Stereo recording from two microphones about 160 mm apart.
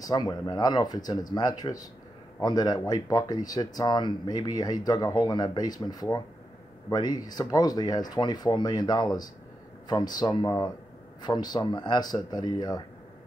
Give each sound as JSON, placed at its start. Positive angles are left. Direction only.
{"t": 0.0, "sound": "speech", "side_deg": 25}